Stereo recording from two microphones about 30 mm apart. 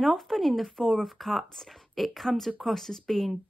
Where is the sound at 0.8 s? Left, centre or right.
Centre.